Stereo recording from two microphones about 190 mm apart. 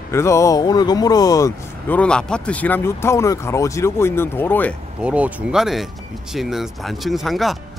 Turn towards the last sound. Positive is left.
turn(degrees=0)  # may be behind; listen again after turning